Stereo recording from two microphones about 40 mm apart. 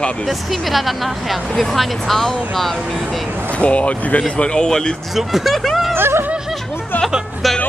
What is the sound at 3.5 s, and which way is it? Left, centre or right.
Speech, left.